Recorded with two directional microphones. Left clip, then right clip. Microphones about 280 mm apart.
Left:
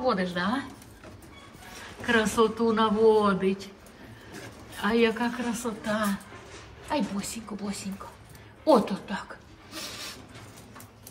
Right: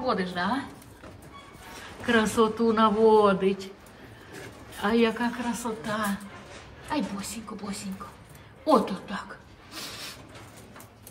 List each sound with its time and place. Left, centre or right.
0.0 s speech: centre
2.0 s speech: centre
4.7 s speech: centre